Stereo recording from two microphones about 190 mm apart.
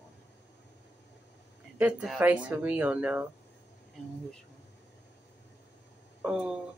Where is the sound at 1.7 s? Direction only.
5° right (ahead or behind).